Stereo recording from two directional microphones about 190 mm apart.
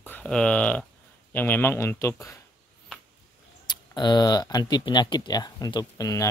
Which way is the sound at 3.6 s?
25° left (ahead or behind).